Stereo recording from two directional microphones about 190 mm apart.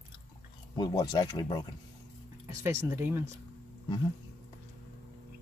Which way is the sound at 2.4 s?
15° right (ahead or behind).